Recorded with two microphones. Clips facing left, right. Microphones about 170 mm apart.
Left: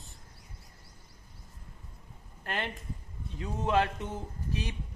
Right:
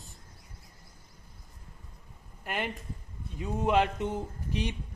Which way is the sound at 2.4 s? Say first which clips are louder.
Right 2 dB; 10° right (ahead or behind).